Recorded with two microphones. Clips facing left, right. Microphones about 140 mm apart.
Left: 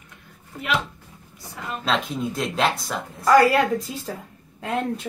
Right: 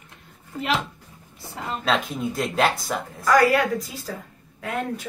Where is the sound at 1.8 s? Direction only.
Centre (ahead or behind).